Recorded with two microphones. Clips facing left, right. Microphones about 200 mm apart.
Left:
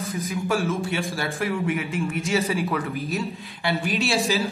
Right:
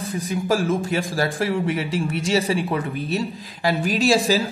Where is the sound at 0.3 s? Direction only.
35° right (ahead or behind).